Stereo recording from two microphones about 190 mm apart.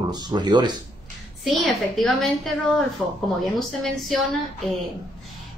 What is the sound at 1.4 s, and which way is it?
Speech, centre (ahead or behind).